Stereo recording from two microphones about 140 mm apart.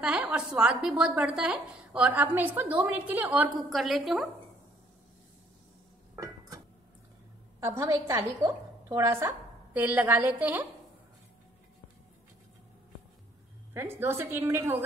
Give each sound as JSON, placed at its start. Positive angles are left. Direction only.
{"t": 0.0, "sound": "a woman's voice", "side_deg": -5}
{"t": 3.5, "sound": "a woman's voice", "side_deg": 0}
{"t": 6.1, "sound": "a sound", "side_deg": -25}
{"t": 7.6, "sound": "a woman's voice", "side_deg": -20}
{"t": 13.7, "sound": "a woman's voice", "side_deg": -15}